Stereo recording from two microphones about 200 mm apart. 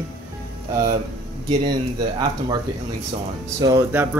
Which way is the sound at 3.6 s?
15° right (ahead or behind).